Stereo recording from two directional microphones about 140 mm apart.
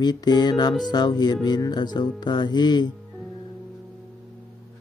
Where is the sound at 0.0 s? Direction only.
30° left (ahead or behind).